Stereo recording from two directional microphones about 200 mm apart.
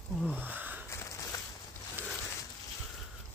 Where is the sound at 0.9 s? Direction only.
15° left (ahead or behind).